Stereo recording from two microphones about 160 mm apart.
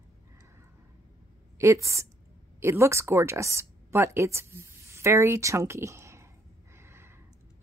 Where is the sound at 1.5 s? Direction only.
15° right (ahead or behind).